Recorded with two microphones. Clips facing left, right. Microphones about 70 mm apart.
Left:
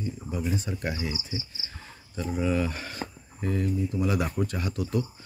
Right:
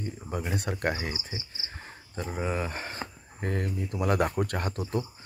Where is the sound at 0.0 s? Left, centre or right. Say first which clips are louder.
Left 2 dB; right.